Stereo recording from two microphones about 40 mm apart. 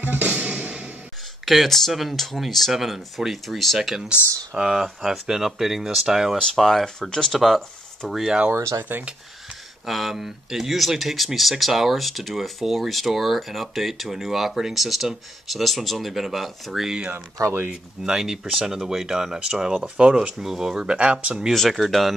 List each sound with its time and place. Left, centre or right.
0.0 s music: right
1.4 s speech: centre
6.3 s speech: centre
7.3 s speech: centre
8.9 s speech: right
9.8 s speech: centre
16.8 s speech: centre
17.1 s speech: right
18.0 s speech: centre
19.8 s speech: right
20.2 s speech: centre
20.8 s speech: right
21.5 s speech: centre